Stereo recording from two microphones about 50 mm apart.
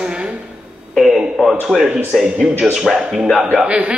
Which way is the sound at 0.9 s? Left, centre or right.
Centre.